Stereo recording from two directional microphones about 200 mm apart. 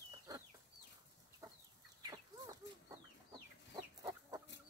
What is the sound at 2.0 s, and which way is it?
Chicken, 20° right (ahead or behind).